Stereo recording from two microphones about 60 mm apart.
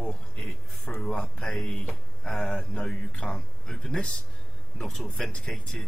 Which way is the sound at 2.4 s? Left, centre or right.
Left.